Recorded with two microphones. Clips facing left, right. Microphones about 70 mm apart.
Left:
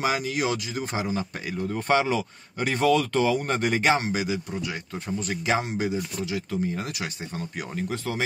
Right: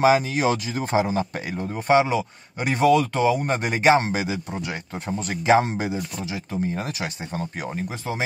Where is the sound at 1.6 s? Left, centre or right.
Centre; by 7.8 s right.